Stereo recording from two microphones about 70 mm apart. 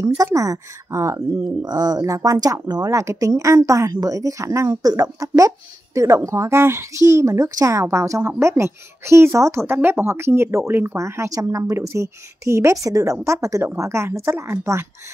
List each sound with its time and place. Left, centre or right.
0.0 s speech: right
1.6 s speech: right
11.0 s speech: right